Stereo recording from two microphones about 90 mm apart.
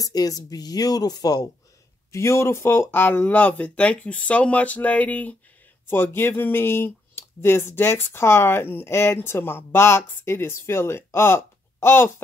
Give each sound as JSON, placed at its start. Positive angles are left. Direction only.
{"t": 0.0, "sound": "speech", "side_deg": 45}
{"t": 2.1, "sound": "speech", "side_deg": 30}